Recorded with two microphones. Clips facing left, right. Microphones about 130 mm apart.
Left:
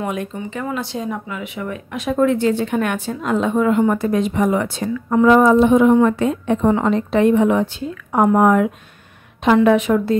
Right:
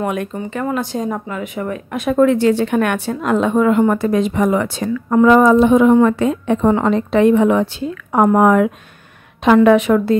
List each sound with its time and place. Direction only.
0.0 s speech: 55° right (ahead or behind)
0.7 s a woman's voice: 40° right (ahead or behind); by 10.1 s 70° right (ahead or behind)